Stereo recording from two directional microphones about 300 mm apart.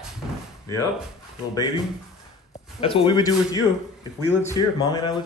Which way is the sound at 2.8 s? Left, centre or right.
Centre.